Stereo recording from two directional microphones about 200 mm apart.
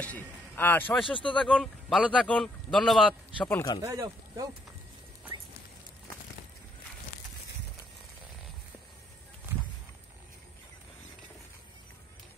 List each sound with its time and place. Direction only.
0.0 s a man's voice: 10° left (ahead or behind)
1.0 s speech: 25° left (ahead or behind)
1.3 s speech: 5° left (ahead or behind)
3.4 s speech: 10° left (ahead or behind)
3.8 s speech: 15° right (ahead or behind)